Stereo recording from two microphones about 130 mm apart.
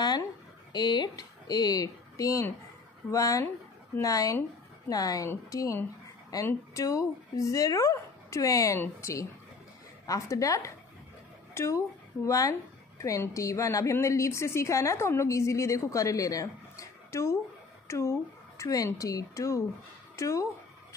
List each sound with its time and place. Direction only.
0.7 s a woman's voice: 35° left (ahead or behind)